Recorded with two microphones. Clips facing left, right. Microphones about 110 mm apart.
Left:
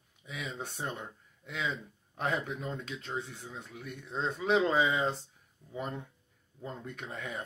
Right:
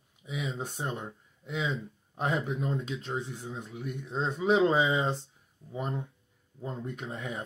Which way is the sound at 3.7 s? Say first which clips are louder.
Right 3 dB; 10° right (ahead or behind).